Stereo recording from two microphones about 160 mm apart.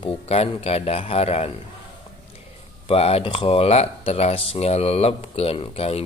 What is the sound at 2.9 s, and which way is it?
A man's voice, 35° left (ahead or behind).